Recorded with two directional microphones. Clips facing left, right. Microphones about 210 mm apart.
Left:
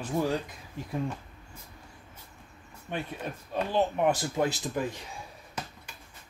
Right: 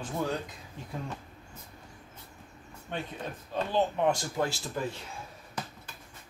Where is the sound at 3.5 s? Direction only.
15° left (ahead or behind).